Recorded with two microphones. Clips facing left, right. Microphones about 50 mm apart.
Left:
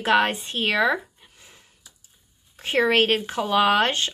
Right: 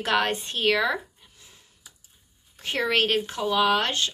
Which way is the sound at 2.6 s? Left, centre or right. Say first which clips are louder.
Left 4 dB; left.